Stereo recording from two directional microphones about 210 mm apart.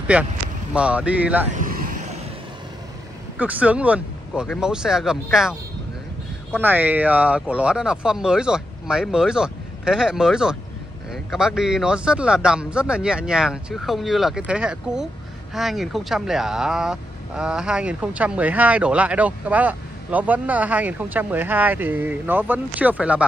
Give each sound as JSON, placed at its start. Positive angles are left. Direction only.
{"t": 0.1, "sound": "speech", "side_deg": -5}
{"t": 1.5, "sound": "vehicle", "side_deg": -40}
{"t": 3.3, "sound": "speech", "side_deg": -5}
{"t": 6.6, "sound": "speech", "side_deg": -10}